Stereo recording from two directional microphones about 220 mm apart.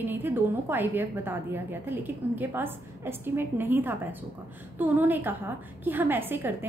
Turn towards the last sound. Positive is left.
turn(degrees=-10)  # may be behind; listen again after turning